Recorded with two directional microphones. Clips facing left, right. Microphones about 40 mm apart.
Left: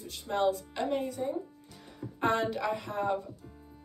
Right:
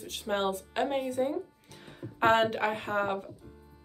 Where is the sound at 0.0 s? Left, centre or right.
Right.